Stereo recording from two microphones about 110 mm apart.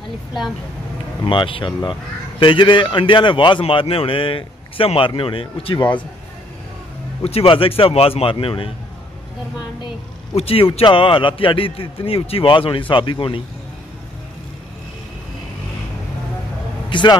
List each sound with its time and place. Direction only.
1.2 s a man's voice: 50° left (ahead or behind)
7.2 s a man's voice: 60° left (ahead or behind)
10.3 s a man's voice: 60° left (ahead or behind)
16.9 s a man's voice: 45° left (ahead or behind)